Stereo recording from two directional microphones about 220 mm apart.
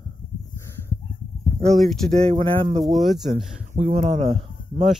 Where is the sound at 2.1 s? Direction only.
30° right (ahead or behind).